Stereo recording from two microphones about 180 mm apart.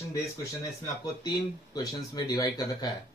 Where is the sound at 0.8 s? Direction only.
20° left (ahead or behind).